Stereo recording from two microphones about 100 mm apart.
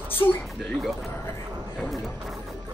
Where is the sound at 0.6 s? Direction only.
Centre (ahead or behind).